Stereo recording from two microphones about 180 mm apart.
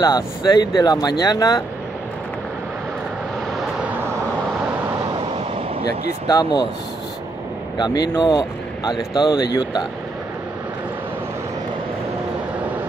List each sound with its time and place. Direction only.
0.0 s speech: 20° left (ahead or behind)
6.2 s speech: 25° left (ahead or behind)
7.7 s speech: 25° left (ahead or behind)